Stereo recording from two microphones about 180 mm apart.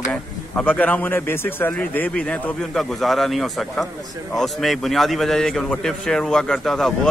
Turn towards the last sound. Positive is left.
turn(degrees=0)  # may be behind; listen again after turning